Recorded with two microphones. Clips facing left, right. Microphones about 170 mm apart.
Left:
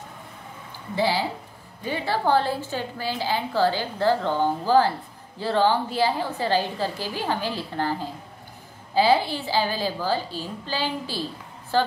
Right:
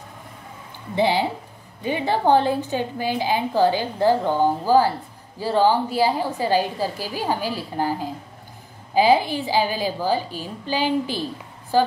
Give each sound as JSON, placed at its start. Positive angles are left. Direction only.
{"t": 0.9, "sound": "a woman's voice", "side_deg": -20}